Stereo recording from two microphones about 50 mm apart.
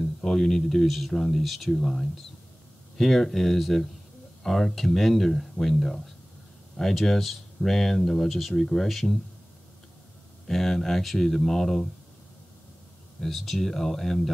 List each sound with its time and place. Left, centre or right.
0.0 s speech: centre
10.4 s speech: centre
13.2 s speech: centre